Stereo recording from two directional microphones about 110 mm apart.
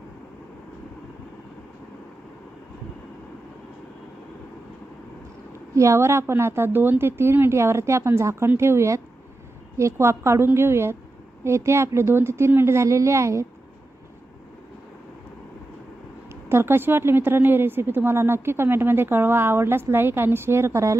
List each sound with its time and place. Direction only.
5.8 s a woman's voice: 25° right (ahead or behind)
16.4 s a woman's voice: 20° right (ahead or behind)